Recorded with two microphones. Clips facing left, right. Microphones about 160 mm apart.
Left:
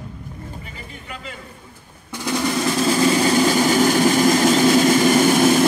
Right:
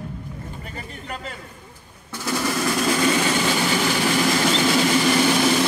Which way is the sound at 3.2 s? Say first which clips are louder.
Left 5 dB; 40° left (ahead or behind).